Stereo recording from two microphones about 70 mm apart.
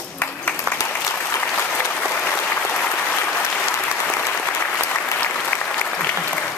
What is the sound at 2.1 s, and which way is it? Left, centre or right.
Applause, left.